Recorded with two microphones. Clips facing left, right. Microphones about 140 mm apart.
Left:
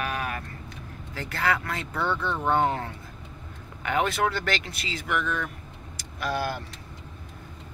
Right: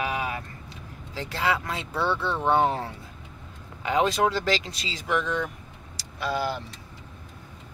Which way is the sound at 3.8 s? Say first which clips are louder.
Right 2 dB; 25° right (ahead or behind).